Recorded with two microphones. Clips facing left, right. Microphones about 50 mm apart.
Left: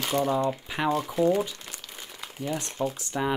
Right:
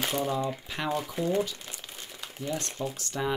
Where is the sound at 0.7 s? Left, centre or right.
Centre.